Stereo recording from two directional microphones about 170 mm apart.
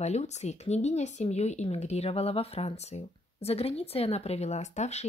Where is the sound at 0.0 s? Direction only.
40° left (ahead or behind).